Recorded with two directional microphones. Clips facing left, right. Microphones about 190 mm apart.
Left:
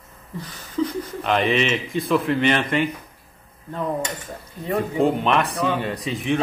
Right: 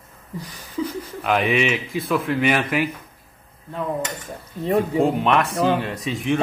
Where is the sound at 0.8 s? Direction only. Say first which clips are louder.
Left 3 dB; 5° right (ahead or behind).